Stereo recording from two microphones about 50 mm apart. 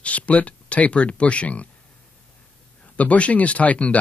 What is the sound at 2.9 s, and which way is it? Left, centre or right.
Speech, left.